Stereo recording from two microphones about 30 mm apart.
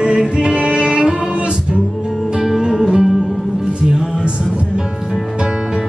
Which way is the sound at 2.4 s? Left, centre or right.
Centre.